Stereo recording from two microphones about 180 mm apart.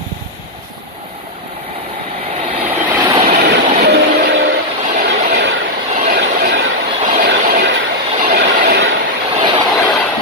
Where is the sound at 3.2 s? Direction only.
60° right (ahead or behind).